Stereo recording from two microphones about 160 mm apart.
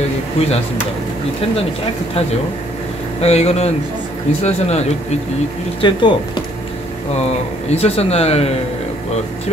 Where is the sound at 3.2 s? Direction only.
40° left (ahead or behind).